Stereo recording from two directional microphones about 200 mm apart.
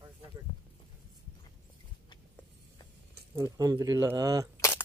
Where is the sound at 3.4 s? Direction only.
15° right (ahead or behind).